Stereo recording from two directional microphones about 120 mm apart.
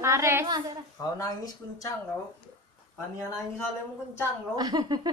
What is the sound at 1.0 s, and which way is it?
Speech, 30° left (ahead or behind).